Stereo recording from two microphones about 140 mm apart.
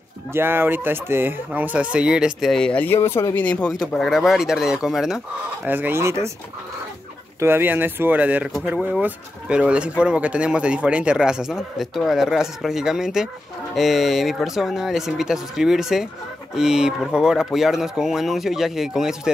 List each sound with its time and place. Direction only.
0.3 s speech: 15° right (ahead or behind)
5.7 s speech: 15° right (ahead or behind)
7.3 s speech: 15° right (ahead or behind)